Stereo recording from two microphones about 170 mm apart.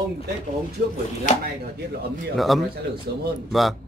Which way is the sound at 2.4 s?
Centre (ahead or behind).